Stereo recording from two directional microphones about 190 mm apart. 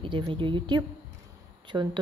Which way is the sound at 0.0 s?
25° right (ahead or behind).